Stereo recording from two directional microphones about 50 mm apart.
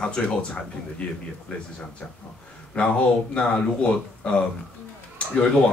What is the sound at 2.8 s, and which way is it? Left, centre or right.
Speech, left.